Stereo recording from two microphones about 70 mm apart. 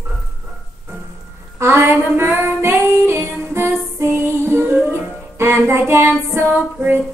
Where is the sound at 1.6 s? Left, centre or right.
Right.